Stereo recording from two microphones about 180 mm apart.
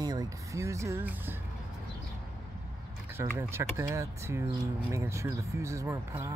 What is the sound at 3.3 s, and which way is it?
Speech, 15° right (ahead or behind).